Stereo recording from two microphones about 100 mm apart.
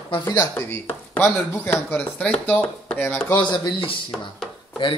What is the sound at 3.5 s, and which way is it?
Speech, 50° left (ahead or behind).